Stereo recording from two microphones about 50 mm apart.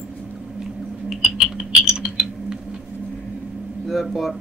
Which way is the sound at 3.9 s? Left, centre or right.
Centre.